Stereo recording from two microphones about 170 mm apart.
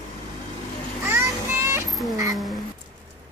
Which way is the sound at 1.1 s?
15° right (ahead or behind).